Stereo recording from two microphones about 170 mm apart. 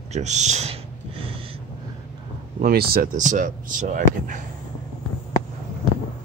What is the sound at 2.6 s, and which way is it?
Speech, 65° right (ahead or behind).